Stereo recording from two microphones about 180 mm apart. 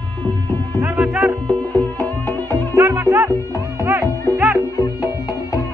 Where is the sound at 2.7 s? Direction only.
15° right (ahead or behind).